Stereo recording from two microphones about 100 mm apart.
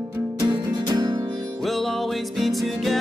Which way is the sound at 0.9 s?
45° right (ahead or behind).